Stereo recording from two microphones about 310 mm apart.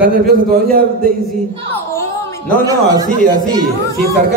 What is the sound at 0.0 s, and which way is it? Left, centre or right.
Speech, right.